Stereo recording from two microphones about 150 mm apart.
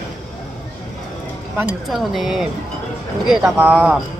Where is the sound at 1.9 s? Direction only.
Centre (ahead or behind).